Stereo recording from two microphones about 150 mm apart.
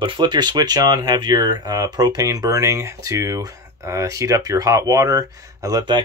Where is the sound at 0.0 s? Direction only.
30° right (ahead or behind).